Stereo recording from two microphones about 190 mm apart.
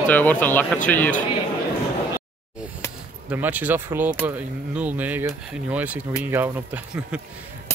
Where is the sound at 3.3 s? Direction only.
10° right (ahead or behind).